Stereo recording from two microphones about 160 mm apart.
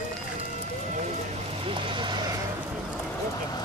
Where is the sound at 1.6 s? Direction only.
35° right (ahead or behind).